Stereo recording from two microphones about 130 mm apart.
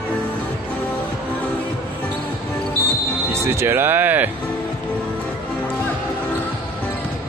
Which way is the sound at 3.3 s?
20° right (ahead or behind).